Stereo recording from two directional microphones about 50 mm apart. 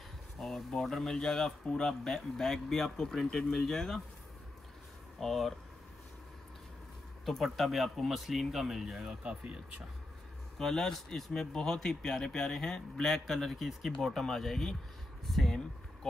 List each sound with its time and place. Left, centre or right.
0.4 s speech: centre
5.2 s speech: centre
7.2 s speech: centre
9.4 s speech: right
10.6 s speech: centre